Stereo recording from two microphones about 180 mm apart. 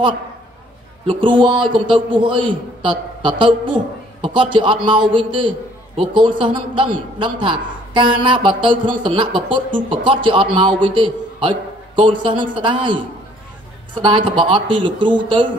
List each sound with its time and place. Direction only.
1.0 s a man's voice: 25° right (ahead or behind)